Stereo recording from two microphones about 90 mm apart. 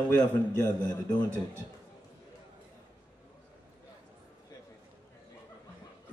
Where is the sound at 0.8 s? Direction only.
45° left (ahead or behind).